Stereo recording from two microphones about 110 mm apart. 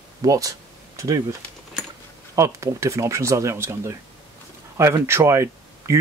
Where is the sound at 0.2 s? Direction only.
30° right (ahead or behind).